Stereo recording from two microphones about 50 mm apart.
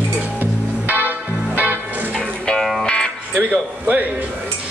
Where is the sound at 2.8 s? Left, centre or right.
Centre.